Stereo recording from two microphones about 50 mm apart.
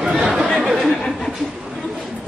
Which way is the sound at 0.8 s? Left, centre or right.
Centre.